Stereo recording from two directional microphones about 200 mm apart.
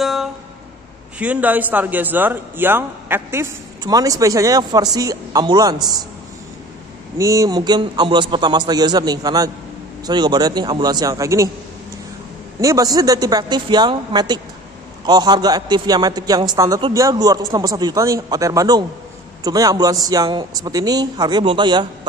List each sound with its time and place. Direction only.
0.0 s music: centre (ahead or behind)
1.2 s speech: 5° right (ahead or behind)
7.2 s a man's voice: 15° right (ahead or behind)
12.5 s a man's voice: 15° right (ahead or behind)